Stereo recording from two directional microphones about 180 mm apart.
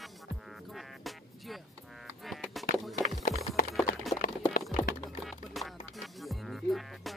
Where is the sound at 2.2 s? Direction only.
Centre (ahead or behind).